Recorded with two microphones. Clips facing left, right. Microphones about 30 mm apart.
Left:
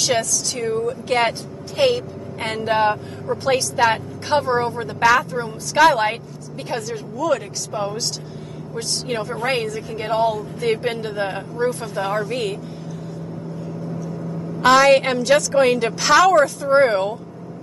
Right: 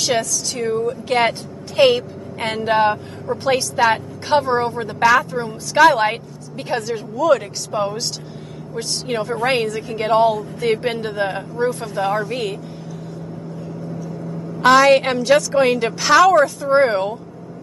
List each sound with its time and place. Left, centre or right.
0.0 s a woman's voice: centre
1.8 s a woman's voice: right
2.4 s a woman's voice: centre
6.9 s a woman's voice: right
9.6 s a woman's voice: right
10.6 s a woman's voice: centre
14.6 s a woman's voice: centre